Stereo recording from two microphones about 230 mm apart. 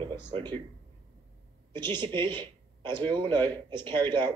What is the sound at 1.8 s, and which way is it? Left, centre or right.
Speech, centre.